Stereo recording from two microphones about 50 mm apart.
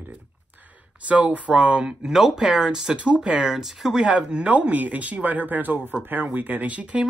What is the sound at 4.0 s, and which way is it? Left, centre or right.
Speech, right.